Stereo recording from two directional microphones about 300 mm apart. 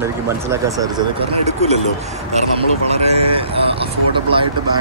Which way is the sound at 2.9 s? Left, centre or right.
Right.